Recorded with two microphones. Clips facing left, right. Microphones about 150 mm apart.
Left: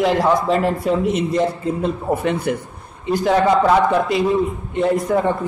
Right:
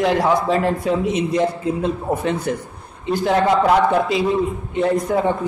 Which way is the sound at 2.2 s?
55° left (ahead or behind).